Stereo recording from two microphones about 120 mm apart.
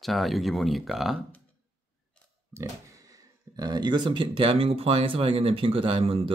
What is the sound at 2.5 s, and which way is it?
Speech, 25° right (ahead or behind).